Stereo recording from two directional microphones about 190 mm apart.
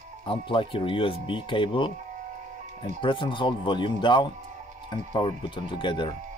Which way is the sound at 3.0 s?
25° left (ahead or behind).